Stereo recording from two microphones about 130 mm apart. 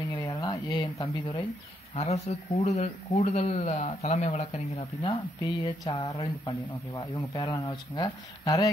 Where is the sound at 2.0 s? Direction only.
55° left (ahead or behind).